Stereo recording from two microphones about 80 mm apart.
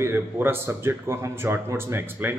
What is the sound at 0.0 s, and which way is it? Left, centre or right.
Speech, right.